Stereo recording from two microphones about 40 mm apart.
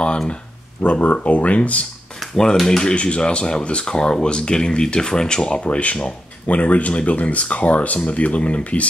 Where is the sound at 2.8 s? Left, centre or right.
Left.